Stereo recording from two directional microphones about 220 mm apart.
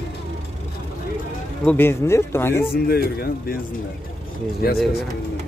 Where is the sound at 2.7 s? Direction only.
45° left (ahead or behind).